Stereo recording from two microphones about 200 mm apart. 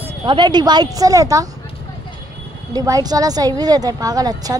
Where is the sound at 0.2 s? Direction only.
20° right (ahead or behind).